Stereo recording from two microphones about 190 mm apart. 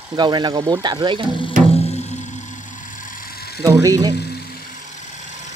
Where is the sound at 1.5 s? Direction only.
45° right (ahead or behind).